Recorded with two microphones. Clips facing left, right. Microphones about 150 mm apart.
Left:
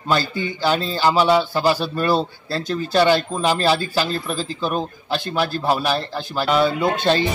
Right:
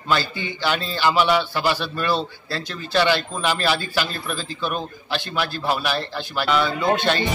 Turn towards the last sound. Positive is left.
turn(degrees=35)  # may be behind; listen again after turning